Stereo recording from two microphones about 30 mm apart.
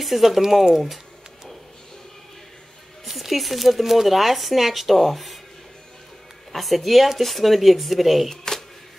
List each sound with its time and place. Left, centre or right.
0.0 s speech: centre
3.1 s speech: centre
6.5 s speech: centre
8.3 s camera: centre